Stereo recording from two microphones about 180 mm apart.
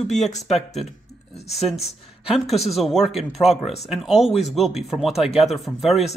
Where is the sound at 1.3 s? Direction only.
35° left (ahead or behind).